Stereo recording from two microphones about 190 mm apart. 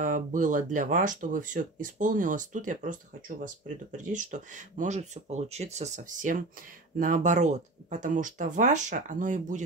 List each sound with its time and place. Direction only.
0.0 s speech: 45° right (ahead or behind)